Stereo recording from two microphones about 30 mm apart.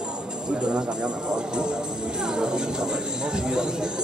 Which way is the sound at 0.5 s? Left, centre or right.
Right.